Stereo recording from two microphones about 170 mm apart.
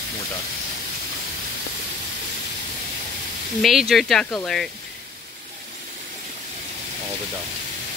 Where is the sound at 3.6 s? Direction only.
Centre (ahead or behind).